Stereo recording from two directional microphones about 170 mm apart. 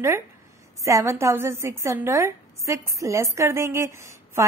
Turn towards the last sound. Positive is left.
turn(degrees=-15)  # may be behind; listen again after turning